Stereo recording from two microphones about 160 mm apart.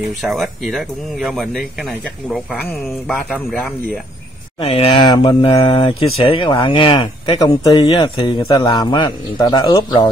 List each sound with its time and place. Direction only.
0.1 s speech: centre (ahead or behind)
4.6 s speech: 35° left (ahead or behind)